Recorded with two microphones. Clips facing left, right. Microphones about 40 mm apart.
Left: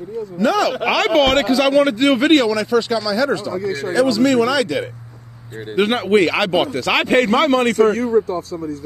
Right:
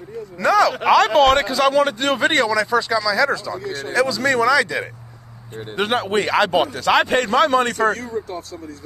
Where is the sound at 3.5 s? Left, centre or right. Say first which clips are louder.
Left 4 dB; right.